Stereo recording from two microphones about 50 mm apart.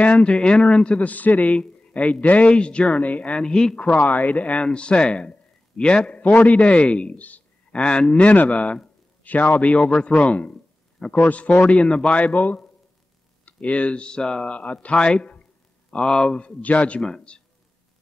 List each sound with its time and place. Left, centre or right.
0.0 s speech: left
3.9 s a man's voice: left
4.5 s a man's voice: centre
7.7 s a man's voice: centre
16.3 s speech: left